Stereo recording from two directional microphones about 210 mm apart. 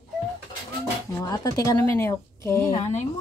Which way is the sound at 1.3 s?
15° left (ahead or behind).